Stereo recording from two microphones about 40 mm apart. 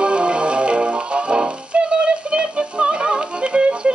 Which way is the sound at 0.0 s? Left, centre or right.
Right.